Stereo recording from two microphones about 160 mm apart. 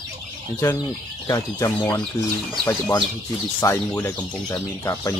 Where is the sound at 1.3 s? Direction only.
20° left (ahead or behind).